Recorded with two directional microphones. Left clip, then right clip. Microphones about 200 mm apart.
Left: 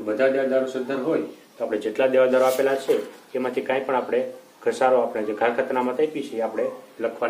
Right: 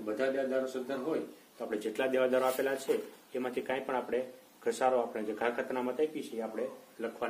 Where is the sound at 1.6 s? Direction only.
40° right (ahead or behind).